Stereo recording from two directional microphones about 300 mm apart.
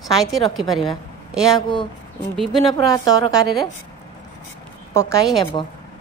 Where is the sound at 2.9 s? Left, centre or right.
Centre.